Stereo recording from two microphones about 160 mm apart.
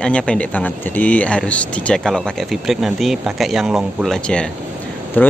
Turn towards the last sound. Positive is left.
turn(degrees=10)  # may be behind; listen again after turning